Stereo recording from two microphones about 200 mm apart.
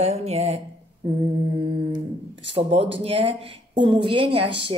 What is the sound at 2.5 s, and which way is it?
A woman's voice, 30° right (ahead or behind).